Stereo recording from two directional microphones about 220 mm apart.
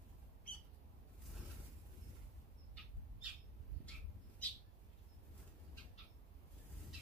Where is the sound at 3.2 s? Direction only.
5° right (ahead or behind).